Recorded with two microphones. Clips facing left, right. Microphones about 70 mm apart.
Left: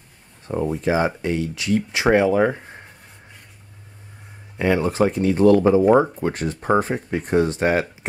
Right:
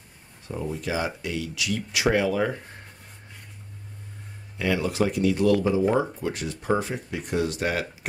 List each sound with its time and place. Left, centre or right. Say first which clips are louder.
0.5 s speech: left 8 dB; left
4.6 s speech: left 6 dB; left